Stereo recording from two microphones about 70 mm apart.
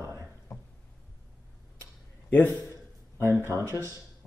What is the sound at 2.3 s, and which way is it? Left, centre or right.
Speech, left.